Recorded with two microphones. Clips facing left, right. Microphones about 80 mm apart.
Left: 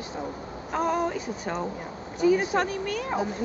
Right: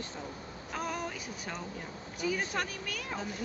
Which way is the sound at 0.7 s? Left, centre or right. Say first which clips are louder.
Left 11 dB; left.